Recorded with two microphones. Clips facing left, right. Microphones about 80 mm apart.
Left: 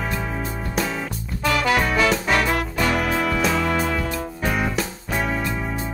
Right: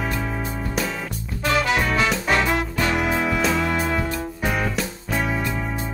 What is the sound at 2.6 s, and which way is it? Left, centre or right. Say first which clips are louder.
Music: left 1 dB; right.